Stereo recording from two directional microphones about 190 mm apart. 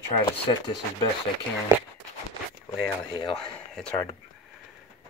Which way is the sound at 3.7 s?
5° left (ahead or behind).